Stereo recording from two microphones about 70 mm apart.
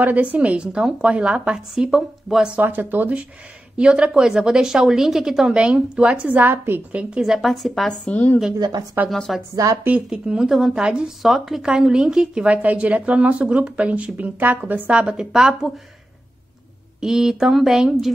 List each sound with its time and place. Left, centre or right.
0.0 s a woman's voice: right
2.5 s a woman's voice: right
7.2 s speech: centre
8.1 s a woman's voice: left
8.5 s a woman's voice: right
9.1 s speech: centre
9.6 s a woman's voice: right
10.0 s a woman's voice: centre
17.0 s a woman's voice: centre